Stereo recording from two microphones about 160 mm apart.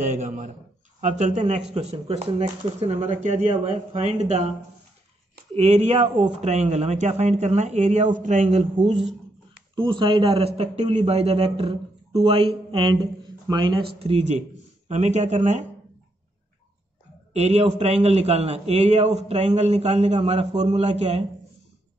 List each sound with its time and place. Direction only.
0.0 s a man's voice: 50° right (ahead or behind)
9.8 s a man's voice: 30° right (ahead or behind)
13.9 s a man's voice: 40° right (ahead or behind)
17.3 s a man's voice: 40° right (ahead or behind)